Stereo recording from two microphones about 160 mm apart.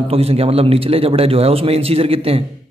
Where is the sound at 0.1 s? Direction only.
40° right (ahead or behind).